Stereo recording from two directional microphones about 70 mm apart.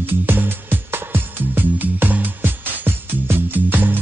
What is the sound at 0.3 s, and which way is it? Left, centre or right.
Music, right.